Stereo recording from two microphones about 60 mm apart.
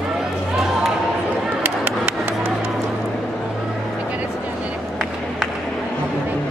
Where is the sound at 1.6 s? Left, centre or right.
Right.